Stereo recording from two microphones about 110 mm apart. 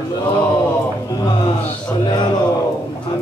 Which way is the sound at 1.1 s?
40° left (ahead or behind).